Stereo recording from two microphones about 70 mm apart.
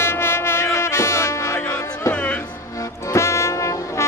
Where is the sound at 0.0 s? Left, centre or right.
Left.